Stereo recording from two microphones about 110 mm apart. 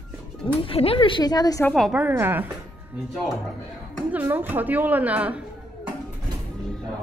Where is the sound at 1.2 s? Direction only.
35° left (ahead or behind).